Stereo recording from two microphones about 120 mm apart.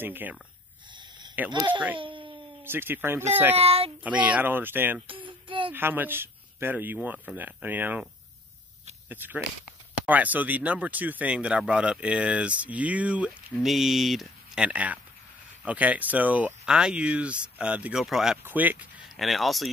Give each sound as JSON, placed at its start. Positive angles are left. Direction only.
{"t": 0.0, "sound": "speech", "side_deg": -15}
{"t": 0.9, "sound": "a sound", "side_deg": -40}
{"t": 1.7, "sound": "speech", "side_deg": -15}
{"t": 2.0, "sound": "speech", "side_deg": -45}
{"t": 2.6, "sound": "speech", "side_deg": -20}
{"t": 3.5, "sound": "speech", "side_deg": -55}
{"t": 4.0, "sound": "speech", "side_deg": -10}
{"t": 5.0, "sound": "child singing", "side_deg": -45}
{"t": 5.7, "sound": "speech", "side_deg": -15}
{"t": 9.1, "sound": "speech", "side_deg": -15}
{"t": 18.4, "sound": "speech", "side_deg": -15}
{"t": 19.0, "sound": "speech", "side_deg": 0}